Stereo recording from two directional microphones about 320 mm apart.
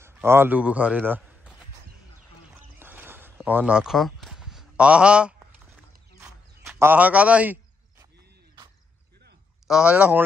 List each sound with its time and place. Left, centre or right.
0.0 s a man's voice: centre
2.8 s a sound: centre
9.7 s speech: centre